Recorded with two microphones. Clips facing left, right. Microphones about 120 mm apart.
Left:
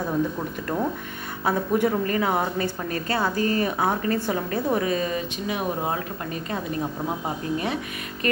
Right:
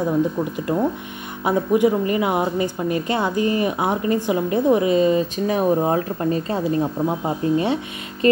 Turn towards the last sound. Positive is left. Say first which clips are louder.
# right 7 dB
turn(degrees=-25)  # may be behind; listen again after turning